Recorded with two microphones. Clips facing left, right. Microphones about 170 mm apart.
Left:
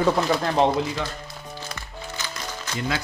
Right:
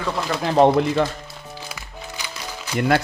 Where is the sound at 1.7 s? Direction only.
10° right (ahead or behind).